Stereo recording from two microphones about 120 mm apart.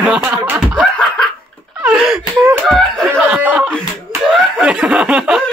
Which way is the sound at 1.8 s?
5° right (ahead or behind).